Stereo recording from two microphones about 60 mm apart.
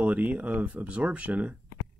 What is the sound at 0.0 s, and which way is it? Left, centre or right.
Speech, right.